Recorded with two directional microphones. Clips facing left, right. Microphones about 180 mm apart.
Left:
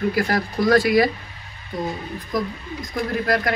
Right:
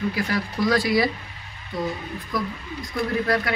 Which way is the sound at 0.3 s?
50° left (ahead or behind).